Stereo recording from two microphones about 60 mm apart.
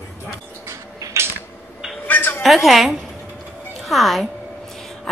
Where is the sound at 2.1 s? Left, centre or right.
Left.